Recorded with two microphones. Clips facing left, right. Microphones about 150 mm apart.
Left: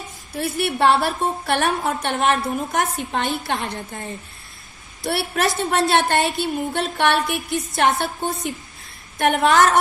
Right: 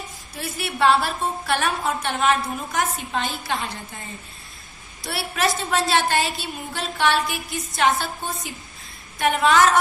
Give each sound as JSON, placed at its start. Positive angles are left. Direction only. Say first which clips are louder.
{"t": 0.4, "sound": "music", "louder": "left 3 dB", "side_deg": 55}
{"t": 5.0, "sound": "a woman's voice", "louder": "left 3 dB", "side_deg": 55}
{"t": 5.7, "sound": "music", "louder": "left 4 dB", "side_deg": 60}
{"t": 9.2, "sound": "a woman's voice", "louder": "left 2 dB", "side_deg": 55}